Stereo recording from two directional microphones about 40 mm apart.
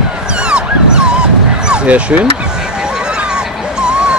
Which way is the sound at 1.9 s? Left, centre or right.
Right.